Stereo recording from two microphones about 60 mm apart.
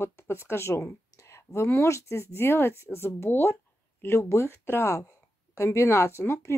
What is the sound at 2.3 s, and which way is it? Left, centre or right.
Speech, left.